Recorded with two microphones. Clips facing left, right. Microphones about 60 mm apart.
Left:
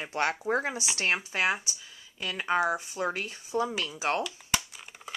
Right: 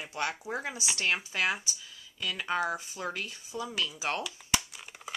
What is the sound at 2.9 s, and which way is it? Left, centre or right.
Speech, left.